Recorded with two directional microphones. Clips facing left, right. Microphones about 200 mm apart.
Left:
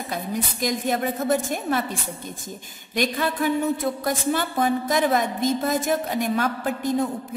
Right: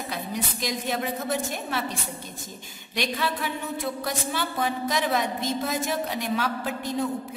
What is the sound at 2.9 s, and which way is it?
A woman's voice, 50° left (ahead or behind).